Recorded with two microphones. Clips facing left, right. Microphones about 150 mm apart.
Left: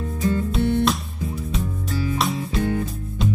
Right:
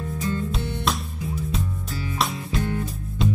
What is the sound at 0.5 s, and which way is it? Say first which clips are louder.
Music: left 7 dB; centre (ahead or behind).